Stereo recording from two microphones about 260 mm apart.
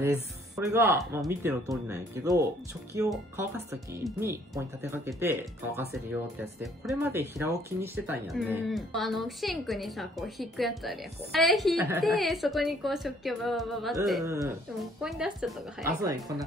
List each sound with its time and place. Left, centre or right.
0.0 s speech: centre
14.2 s speech: centre
15.8 s speech: centre